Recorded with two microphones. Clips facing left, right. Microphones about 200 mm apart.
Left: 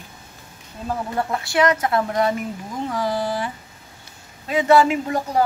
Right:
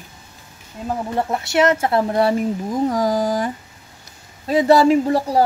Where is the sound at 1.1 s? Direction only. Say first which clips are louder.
Right 3 dB; 25° right (ahead or behind).